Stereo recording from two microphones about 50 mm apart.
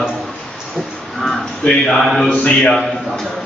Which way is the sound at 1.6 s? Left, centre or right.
Left.